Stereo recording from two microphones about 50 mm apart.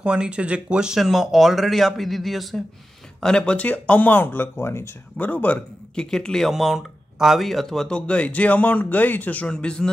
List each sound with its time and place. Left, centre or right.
0.0 s speech: centre
3.2 s a man's voice: centre; by 4.8 s left
5.2 s speech: left
5.9 s a man's voice: centre
6.5 s speech: centre
8.1 s speech: left
9.5 s a man's voice: centre